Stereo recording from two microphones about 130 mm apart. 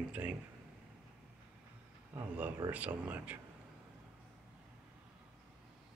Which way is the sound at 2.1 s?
15° right (ahead or behind).